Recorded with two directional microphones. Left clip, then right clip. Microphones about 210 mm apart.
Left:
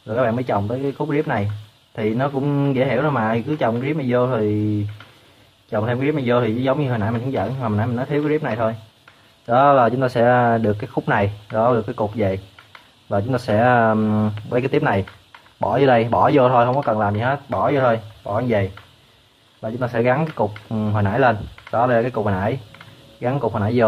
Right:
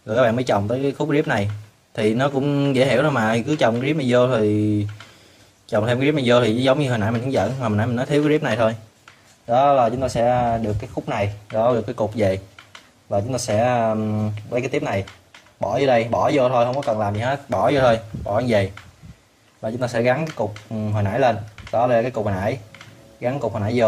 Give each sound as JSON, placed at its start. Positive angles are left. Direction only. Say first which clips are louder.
{"t": 0.0, "sound": "a man's voice", "louder": "right 2 dB", "side_deg": -10}
{"t": 5.7, "sound": "a man's voice", "louder": "right 2 dB", "side_deg": -10}
{"t": 9.5, "sound": "speech", "louder": "left 2 dB", "side_deg": 10}
{"t": 11.5, "sound": "speech", "louder": "left 1 dB", "side_deg": 5}
{"t": 13.1, "sound": "speech", "louder": "left 1 dB", "side_deg": 15}